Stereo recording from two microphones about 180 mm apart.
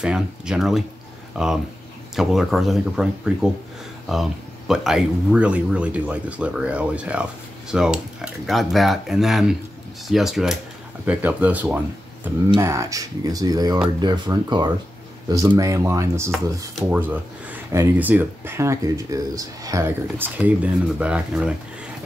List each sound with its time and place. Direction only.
0.0 s speech: 5° right (ahead or behind)